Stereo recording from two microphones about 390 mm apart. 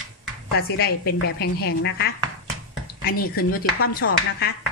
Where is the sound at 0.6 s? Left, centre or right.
Left.